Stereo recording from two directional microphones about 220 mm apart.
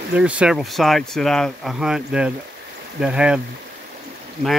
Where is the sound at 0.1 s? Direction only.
5° right (ahead or behind).